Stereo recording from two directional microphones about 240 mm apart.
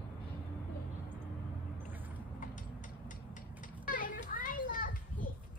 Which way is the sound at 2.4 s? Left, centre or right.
Left.